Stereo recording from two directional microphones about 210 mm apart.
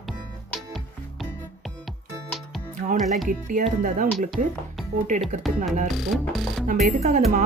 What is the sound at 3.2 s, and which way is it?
Speech, 40° right (ahead or behind).